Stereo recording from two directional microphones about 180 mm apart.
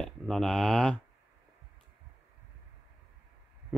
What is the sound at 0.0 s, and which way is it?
Speech, centre (ahead or behind).